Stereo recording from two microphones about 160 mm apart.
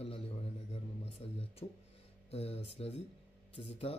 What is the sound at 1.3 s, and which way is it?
Speech, 40° left (ahead or behind).